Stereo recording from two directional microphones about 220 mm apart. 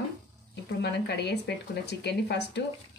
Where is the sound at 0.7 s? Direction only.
50° left (ahead or behind).